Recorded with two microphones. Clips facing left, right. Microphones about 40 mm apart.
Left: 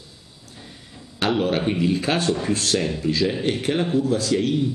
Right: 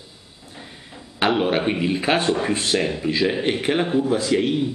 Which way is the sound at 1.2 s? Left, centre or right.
Right.